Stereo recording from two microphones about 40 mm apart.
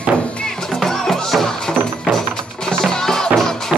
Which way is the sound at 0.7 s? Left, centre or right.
Centre.